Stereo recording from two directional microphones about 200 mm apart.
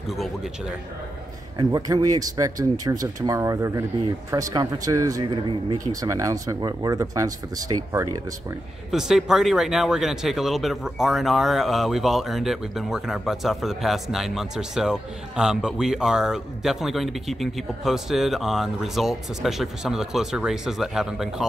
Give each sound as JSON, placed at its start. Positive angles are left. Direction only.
{"t": 0.1, "sound": "speech", "side_deg": 0}
{"t": 1.6, "sound": "speech", "side_deg": -20}
{"t": 8.9, "sound": "speech", "side_deg": 0}